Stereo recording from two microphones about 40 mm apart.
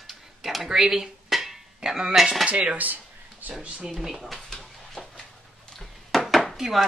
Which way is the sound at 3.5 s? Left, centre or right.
Right.